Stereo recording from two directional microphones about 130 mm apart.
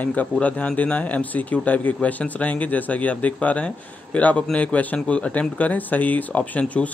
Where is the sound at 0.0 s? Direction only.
10° left (ahead or behind).